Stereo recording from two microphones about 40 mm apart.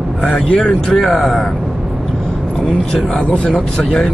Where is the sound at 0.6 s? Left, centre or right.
Centre.